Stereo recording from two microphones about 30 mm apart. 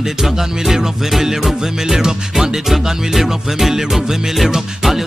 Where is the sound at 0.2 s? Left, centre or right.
Centre.